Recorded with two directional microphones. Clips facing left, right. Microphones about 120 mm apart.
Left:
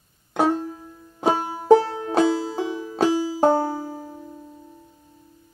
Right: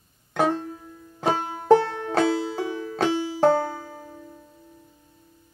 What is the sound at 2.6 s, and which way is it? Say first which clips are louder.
Music: left 3 dB; 20° left (ahead or behind).